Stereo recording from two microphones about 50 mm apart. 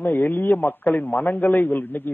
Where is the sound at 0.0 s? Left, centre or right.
Left.